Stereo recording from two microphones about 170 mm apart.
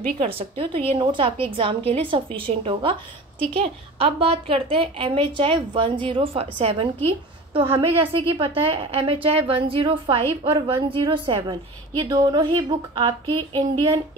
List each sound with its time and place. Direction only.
0.2 s a woman's voice: 35° right (ahead or behind)